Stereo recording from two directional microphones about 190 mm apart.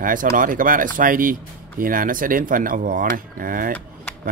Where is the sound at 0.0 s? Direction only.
45° right (ahead or behind).